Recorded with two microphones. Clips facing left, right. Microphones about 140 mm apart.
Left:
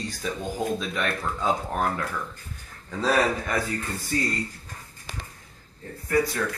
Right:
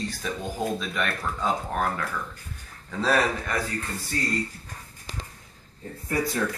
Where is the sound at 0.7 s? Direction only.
Centre (ahead or behind).